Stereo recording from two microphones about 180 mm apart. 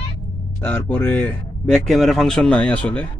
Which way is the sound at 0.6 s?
10° left (ahead or behind).